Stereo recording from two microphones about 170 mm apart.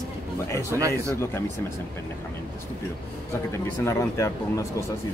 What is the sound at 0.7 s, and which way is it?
Speech, 20° right (ahead or behind).